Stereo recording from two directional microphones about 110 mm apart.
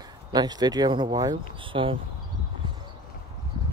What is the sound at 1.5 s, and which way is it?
Speech, 50° right (ahead or behind).